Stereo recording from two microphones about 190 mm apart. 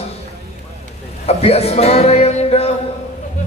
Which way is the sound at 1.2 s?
30° left (ahead or behind).